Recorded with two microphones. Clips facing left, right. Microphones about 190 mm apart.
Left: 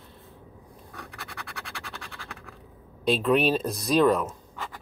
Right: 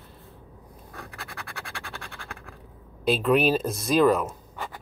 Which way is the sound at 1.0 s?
10° right (ahead or behind).